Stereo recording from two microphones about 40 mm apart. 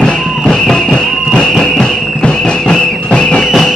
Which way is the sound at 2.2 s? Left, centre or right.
Left.